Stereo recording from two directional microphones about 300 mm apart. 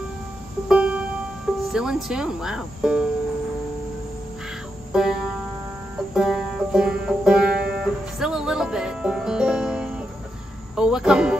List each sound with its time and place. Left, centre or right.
0.7 s music: centre
1.7 s speech: centre
4.9 s music: centre